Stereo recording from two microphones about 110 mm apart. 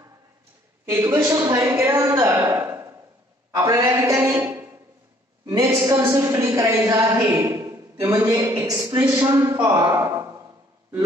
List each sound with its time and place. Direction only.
0.8 s a woman's voice: 30° right (ahead or behind)
2.1 s a sound: 30° right (ahead or behind)
3.5 s a woman's voice: 30° right (ahead or behind)
5.6 s a woman's voice: 25° right (ahead or behind)